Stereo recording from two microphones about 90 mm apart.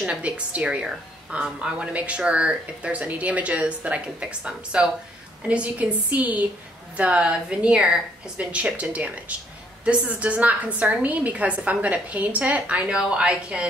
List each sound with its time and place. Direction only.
0.0 s speech: 15° right (ahead or behind)